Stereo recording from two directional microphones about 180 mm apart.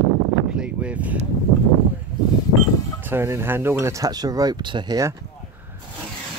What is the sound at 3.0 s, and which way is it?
Speech, 10° right (ahead or behind).